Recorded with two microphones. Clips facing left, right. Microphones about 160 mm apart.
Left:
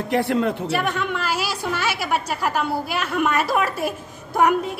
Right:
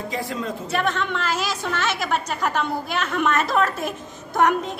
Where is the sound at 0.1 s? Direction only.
65° left (ahead or behind).